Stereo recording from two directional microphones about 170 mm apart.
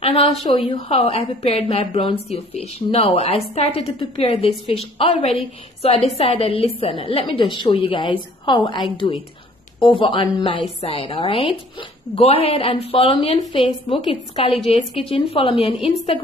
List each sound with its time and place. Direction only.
0.0 s a woman's voice: 35° left (ahead or behind)